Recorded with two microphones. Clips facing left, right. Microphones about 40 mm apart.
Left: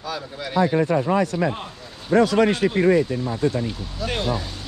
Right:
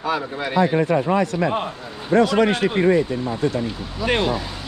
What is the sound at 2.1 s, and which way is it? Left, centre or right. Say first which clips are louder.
Speech: right 1 dB; right.